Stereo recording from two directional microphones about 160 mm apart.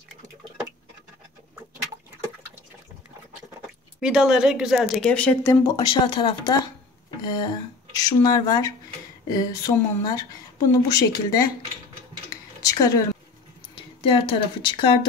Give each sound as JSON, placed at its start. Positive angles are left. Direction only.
{"t": 4.0, "sound": "speech", "side_deg": -5}
{"t": 12.6, "sound": "a woman's voice", "side_deg": 20}
{"t": 13.7, "sound": "speech", "side_deg": 35}